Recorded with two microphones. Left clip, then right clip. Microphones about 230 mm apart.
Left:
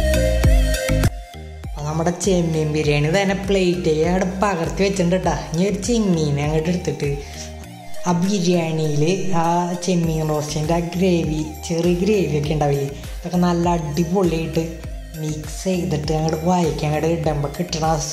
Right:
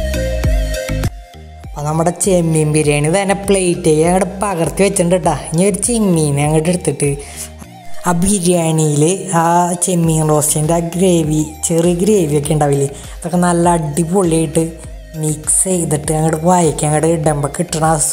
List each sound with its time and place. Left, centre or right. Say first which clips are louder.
0.0 s music: even; centre
1.8 s music: right 6 dB; right